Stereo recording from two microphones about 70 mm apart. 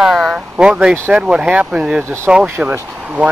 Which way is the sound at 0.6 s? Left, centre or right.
Centre.